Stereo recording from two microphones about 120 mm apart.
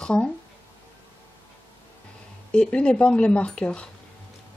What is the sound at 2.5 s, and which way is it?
Speech, 10° left (ahead or behind).